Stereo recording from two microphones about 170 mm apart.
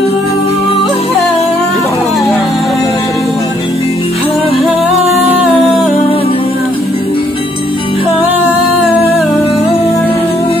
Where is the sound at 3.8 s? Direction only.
35° left (ahead or behind).